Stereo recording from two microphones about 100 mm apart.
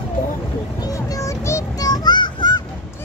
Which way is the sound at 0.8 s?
35° left (ahead or behind).